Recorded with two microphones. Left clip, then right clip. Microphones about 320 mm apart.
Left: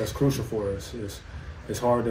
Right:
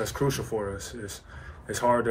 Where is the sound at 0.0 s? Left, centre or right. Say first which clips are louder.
Left 1 dB; centre.